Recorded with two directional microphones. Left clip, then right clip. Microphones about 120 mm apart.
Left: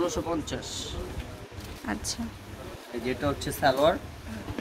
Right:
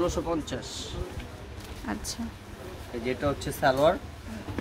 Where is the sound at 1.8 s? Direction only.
5° right (ahead or behind).